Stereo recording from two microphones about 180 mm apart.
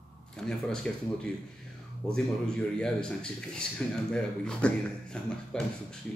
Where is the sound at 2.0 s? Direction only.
5° left (ahead or behind).